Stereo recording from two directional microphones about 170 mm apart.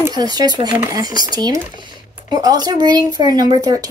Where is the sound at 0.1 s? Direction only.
25° right (ahead or behind).